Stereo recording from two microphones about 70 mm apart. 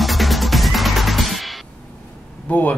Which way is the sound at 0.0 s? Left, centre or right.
Centre.